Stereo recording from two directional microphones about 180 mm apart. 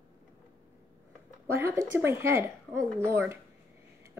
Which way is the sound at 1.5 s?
15° right (ahead or behind).